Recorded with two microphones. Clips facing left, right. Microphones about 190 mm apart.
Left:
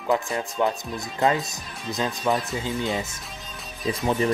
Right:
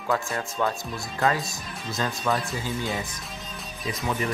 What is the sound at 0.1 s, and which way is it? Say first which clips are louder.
Speech: left 3 dB; 20° left (ahead or behind).